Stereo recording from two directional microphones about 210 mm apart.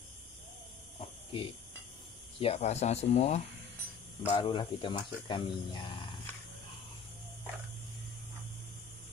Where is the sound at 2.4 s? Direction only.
30° left (ahead or behind).